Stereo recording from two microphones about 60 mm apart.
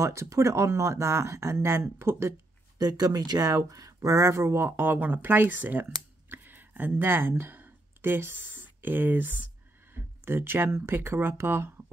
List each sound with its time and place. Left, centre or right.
0.0 s speech: right
2.8 s speech: right
4.3 s speech: right